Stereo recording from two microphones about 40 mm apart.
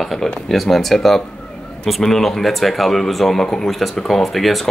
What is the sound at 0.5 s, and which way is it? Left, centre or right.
Speech, centre.